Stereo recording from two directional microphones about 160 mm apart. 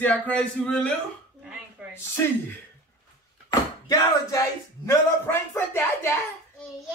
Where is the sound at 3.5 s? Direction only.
20° left (ahead or behind).